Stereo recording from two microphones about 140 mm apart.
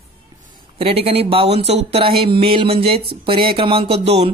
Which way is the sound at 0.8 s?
45° right (ahead or behind).